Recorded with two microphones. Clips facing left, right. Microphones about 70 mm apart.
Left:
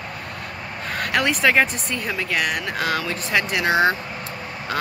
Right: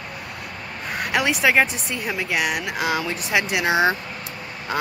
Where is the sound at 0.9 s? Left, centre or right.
Centre.